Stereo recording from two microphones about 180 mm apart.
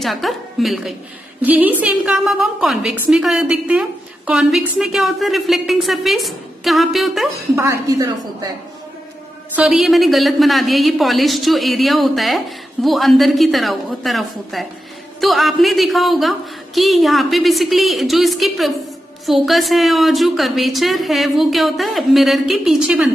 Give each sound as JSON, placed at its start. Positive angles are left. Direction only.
{"t": 0.0, "sound": "a woman's voice", "side_deg": 0}
{"t": 7.5, "sound": "a woman's voice", "side_deg": -15}
{"t": 9.6, "sound": "a woman's voice", "side_deg": 0}